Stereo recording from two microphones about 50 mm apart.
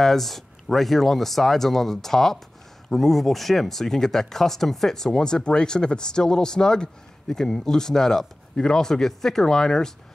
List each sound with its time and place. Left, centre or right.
0.0 s speech: centre